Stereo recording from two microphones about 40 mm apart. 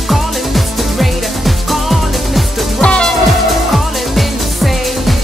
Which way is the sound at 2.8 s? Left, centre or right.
Left.